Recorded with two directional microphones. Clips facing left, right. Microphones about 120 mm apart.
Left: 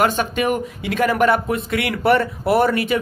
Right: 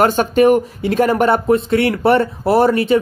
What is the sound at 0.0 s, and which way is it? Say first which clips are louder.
Speech: right 7 dB; 40° right (ahead or behind).